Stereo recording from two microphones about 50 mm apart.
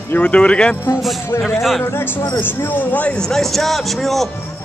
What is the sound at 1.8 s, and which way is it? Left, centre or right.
Speech, left.